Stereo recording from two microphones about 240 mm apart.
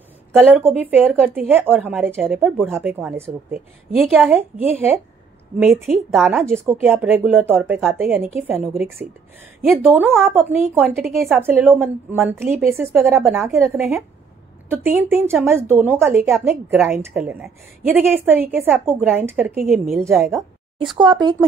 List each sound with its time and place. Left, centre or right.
0.3 s a woman's voice: centre
6.5 s a woman's voice: centre
11.0 s a woman's voice: centre
21.0 s a woman's voice: centre